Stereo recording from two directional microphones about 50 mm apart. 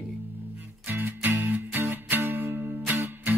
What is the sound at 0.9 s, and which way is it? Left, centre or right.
Music, right.